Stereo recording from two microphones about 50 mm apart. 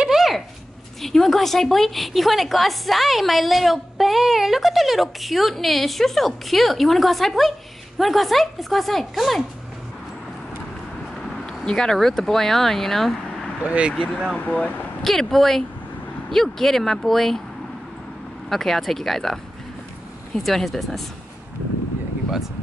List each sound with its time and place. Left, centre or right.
0.1 s a sound: centre
1.0 s a woman's voice: centre
11.6 s speech: centre
13.6 s speech: right
15.0 s speech: centre
18.5 s a woman's voice: centre